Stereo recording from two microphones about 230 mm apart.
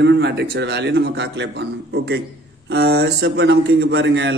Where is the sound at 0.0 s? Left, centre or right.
Right.